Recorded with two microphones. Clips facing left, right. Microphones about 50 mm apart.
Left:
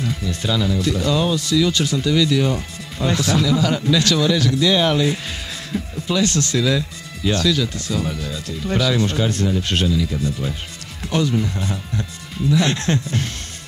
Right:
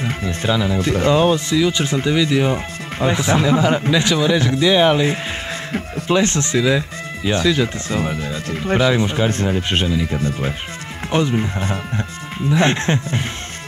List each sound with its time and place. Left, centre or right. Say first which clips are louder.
0.1 s speech: right 3 dB; right
0.7 s speech: right 4 dB; right
10.0 s speech: right 2 dB; right
11.1 s speech: right 2 dB; right